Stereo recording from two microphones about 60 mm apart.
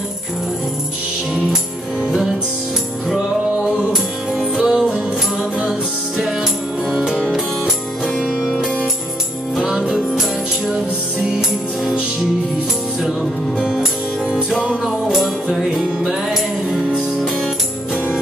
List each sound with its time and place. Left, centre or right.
3.9 s music: centre
9.6 s music: centre
14.9 s music: centre